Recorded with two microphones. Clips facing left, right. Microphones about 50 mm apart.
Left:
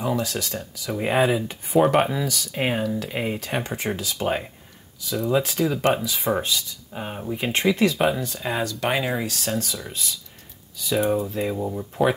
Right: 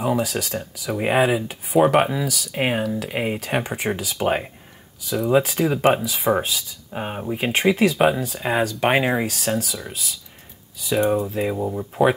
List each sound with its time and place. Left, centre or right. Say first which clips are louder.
0.0 s speech: right 3 dB; centre
6.9 s speech: right 4 dB; right
9.2 s speech: right 3 dB; centre
11.4 s speech: right 2 dB; centre